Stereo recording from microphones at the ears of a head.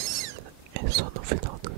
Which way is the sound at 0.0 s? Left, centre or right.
Right.